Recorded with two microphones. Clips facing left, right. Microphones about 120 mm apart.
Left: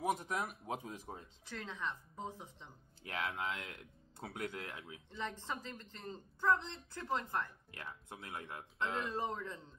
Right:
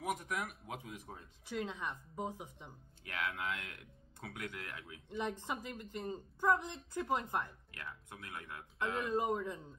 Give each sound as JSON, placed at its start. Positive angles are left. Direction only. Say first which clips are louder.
{"t": 0.0, "sound": "speech", "louder": "left 2 dB", "side_deg": 30}
{"t": 1.4, "sound": "speech", "louder": "right 4 dB", "side_deg": -15}
{"t": 3.0, "sound": "speech", "louder": "even", "side_deg": 25}
{"t": 5.4, "sound": "speech", "louder": "right 2 dB", "side_deg": -15}
{"t": 7.7, "sound": "speech", "louder": "even", "side_deg": 25}
{"t": 9.0, "sound": "speech", "louder": "right 5 dB", "side_deg": -15}